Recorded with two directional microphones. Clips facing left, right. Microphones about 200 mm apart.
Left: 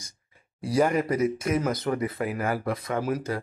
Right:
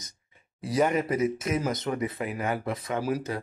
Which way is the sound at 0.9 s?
25° right (ahead or behind).